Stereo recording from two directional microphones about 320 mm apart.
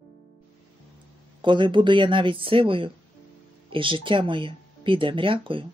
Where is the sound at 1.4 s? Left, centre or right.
Centre.